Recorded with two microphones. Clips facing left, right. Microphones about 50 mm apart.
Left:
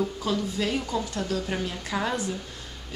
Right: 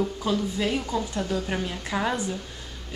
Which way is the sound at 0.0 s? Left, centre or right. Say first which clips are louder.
Right 1 dB; centre.